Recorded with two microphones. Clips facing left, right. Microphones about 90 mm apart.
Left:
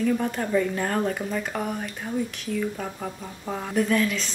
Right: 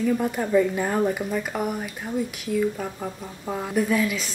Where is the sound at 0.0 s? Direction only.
5° right (ahead or behind).